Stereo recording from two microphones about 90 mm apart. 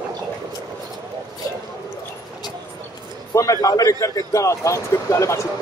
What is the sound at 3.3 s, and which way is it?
A man's voice, 35° left (ahead or behind).